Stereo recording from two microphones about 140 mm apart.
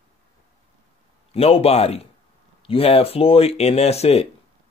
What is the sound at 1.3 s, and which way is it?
A man's voice, 45° left (ahead or behind).